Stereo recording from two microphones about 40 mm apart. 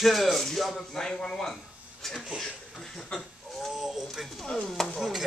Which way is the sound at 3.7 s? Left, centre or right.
Centre.